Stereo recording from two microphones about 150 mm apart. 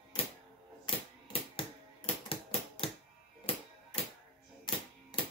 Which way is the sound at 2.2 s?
40° left (ahead or behind).